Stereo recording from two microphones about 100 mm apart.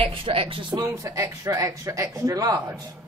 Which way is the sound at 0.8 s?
35° right (ahead or behind).